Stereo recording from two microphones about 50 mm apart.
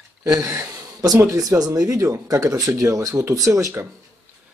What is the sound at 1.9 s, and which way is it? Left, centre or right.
Speech, right.